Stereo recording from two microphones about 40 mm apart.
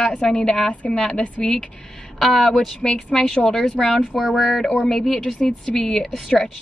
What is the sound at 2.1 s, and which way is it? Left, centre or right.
Speech, centre.